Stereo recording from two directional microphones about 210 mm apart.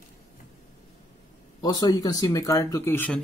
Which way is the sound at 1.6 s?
15° left (ahead or behind).